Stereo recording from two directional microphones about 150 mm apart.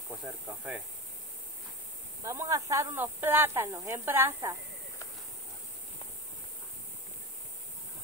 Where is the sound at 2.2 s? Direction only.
20° right (ahead or behind).